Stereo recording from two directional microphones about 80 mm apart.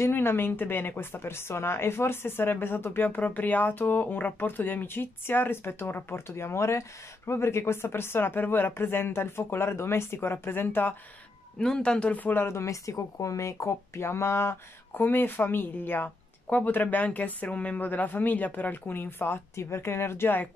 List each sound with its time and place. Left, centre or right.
0.0 s speech: left
11.6 s speech: centre
12.4 s speech: left